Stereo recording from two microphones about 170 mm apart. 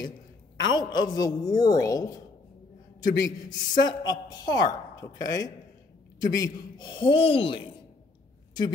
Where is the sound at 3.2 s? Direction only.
25° left (ahead or behind).